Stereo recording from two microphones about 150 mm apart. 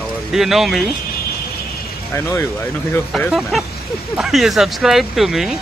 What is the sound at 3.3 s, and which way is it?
Speech, centre (ahead or behind).